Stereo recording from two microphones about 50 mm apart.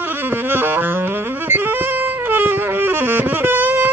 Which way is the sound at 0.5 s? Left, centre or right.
Right.